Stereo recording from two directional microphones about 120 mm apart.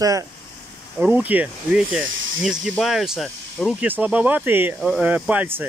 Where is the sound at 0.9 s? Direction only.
15° right (ahead or behind).